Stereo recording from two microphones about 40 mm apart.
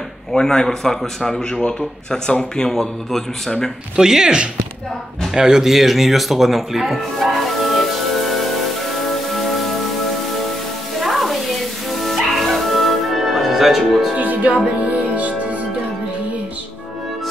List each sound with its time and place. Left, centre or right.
0.3 s a man's voice: centre
2.7 s a man's voice: centre
3.9 s speech: centre
5.3 s music: centre
11.0 s music: centre
14.1 s speech: right